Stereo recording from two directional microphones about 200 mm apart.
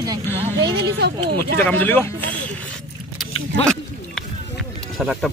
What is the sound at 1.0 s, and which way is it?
Speech, 55° right (ahead or behind).